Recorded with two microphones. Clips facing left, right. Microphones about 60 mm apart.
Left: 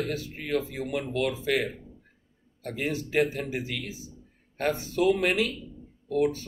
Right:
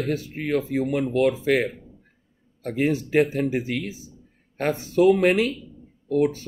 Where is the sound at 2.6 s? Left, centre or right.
Right.